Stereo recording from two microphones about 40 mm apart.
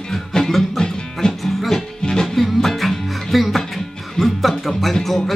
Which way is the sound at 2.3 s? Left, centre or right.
Centre.